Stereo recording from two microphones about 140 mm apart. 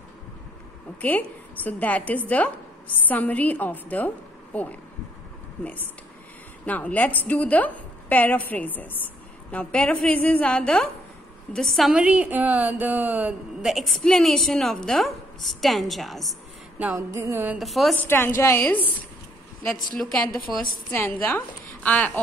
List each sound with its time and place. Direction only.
1.0 s a woman's voice: 10° left (ahead or behind)
16.9 s music: 20° right (ahead or behind)
17.6 s a woman's voice: centre (ahead or behind)
17.9 s a woman's voice: 15° left (ahead or behind)
19.9 s a woman's voice: 5° left (ahead or behind)
20.9 s a woman's voice: 15° left (ahead or behind)